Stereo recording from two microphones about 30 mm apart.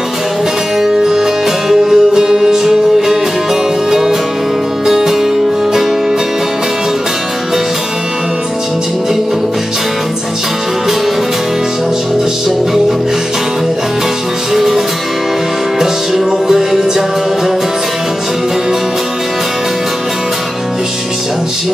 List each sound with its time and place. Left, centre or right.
0.7 s music: centre
4.8 s music: centre
14.5 s music: centre
15.8 s music: centre